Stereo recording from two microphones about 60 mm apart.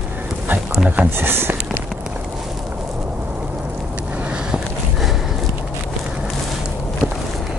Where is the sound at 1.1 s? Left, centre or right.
Right.